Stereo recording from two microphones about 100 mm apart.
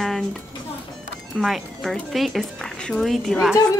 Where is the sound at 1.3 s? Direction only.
Centre (ahead or behind).